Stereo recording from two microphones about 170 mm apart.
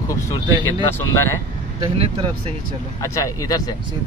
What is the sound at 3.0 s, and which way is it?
Speech, 20° left (ahead or behind).